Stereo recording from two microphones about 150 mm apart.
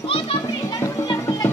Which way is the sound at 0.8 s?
20° left (ahead or behind).